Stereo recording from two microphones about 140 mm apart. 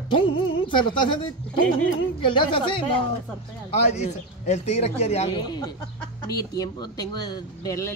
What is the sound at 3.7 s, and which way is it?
Speech, 55° left (ahead or behind).